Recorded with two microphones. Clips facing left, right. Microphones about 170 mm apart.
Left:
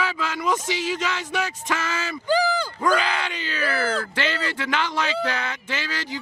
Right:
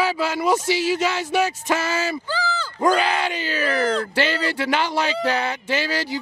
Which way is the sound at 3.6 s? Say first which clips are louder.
Right 3 dB; 25° right (ahead or behind).